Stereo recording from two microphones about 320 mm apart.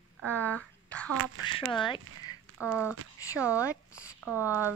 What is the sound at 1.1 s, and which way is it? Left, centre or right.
Speech, right.